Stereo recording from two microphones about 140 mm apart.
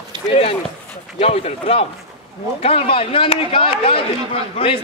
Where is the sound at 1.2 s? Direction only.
45° left (ahead or behind).